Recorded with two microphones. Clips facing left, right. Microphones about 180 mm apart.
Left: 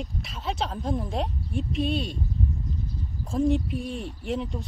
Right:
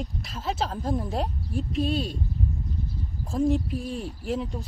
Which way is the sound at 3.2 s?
Centre (ahead or behind).